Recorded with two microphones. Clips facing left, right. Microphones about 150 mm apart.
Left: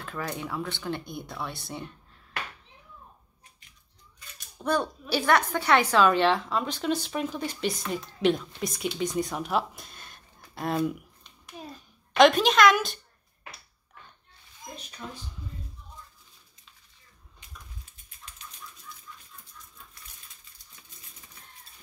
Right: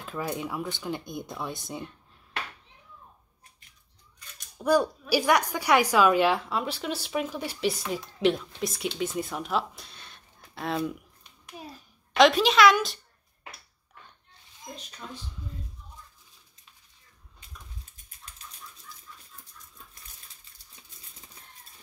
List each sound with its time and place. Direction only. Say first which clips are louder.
0.0 s a woman's voice: right 2 dB; 15° right (ahead or behind)
4.6 s a woman's voice: right 4 dB; 5° right (ahead or behind)
9.8 s a sound: left 1 dB; 45° left (ahead or behind)
10.6 s speech: left 2 dB; 5° left (ahead or behind)
12.2 s speech: even; centre (ahead or behind)